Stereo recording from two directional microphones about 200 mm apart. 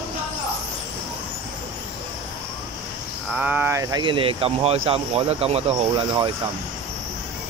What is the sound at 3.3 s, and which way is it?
Speech, 10° right (ahead or behind).